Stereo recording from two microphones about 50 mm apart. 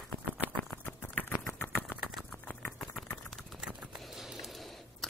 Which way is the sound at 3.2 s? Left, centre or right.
Centre.